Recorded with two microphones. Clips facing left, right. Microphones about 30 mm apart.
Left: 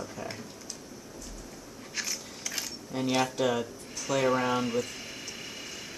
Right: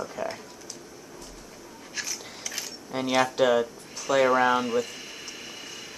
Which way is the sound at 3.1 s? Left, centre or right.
Right.